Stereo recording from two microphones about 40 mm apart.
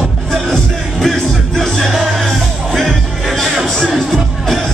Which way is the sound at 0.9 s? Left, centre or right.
Centre.